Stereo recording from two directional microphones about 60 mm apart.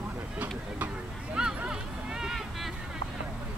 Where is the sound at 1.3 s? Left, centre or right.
Centre.